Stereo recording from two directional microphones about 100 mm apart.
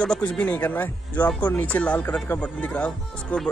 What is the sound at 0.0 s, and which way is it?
Speech, 10° left (ahead or behind).